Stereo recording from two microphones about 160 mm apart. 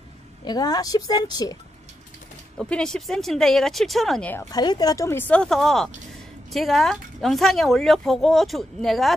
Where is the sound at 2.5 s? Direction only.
5° left (ahead or behind).